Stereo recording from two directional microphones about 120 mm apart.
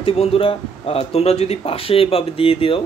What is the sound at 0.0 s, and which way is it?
Speech, 55° left (ahead or behind).